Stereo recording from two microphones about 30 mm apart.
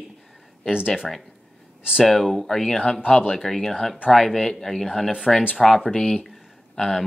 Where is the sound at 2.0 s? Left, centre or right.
Centre.